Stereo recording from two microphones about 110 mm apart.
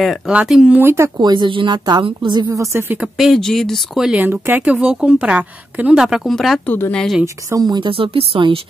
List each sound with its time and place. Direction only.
0.3 s speech: 10° right (ahead or behind)
0.7 s speech: 25° right (ahead or behind)
1.1 s a woman's voice: 40° right (ahead or behind)
2.5 s speech: 25° right (ahead or behind)
3.0 s a woman's voice: 5° right (ahead or behind)
4.2 s a woman's voice: 20° right (ahead or behind); by 6.6 s centre (ahead or behind)
6.6 s speech: 15° left (ahead or behind)
7.4 s speech: 35° right (ahead or behind)
7.9 s speech: 55° right (ahead or behind)